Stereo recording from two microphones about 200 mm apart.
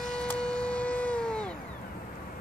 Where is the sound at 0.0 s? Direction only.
5° left (ahead or behind).